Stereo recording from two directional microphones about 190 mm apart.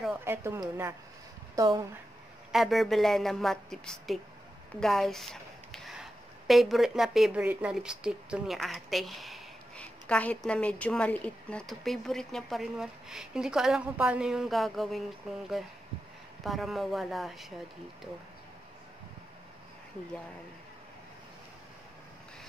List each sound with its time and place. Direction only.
0.0 s a woman's voice: 10° right (ahead or behind)
2.5 s speech: centre (ahead or behind)